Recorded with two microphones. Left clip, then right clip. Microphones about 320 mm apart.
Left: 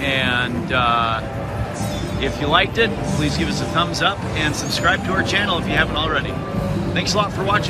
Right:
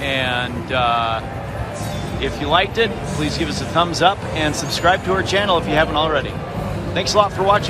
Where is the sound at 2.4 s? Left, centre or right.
Centre.